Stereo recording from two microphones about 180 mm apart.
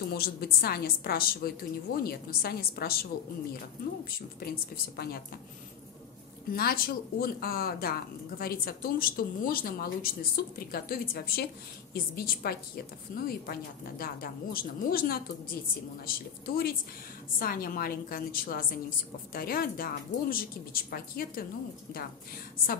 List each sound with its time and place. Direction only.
0.1 s a woman's voice: 60° left (ahead or behind)
4.4 s a woman's voice: 60° left (ahead or behind)
6.5 s a woman's voice: 55° left (ahead or behind)